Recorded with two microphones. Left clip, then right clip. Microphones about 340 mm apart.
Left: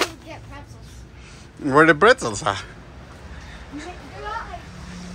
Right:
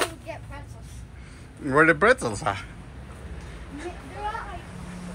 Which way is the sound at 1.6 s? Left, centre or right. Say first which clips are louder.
Left 4 dB; centre.